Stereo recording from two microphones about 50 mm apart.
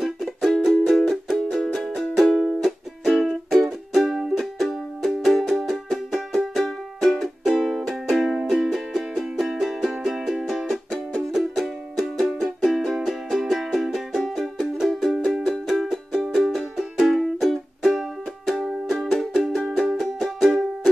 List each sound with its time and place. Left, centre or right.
0.0 s music: centre
3.1 s music: centre
10.5 s music: centre
15.9 s music: centre
16.5 s music: centre
17.0 s music: centre